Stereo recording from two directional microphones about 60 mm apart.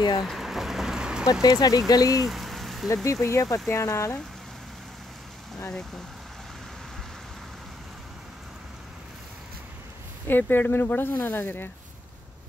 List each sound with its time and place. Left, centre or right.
0.2 s a sound: centre
1.4 s speech: left
2.2 s rain on surface: centre
2.9 s speech: left
10.2 s speech: left